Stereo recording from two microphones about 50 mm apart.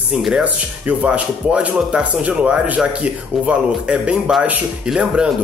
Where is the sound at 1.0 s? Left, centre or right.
Right.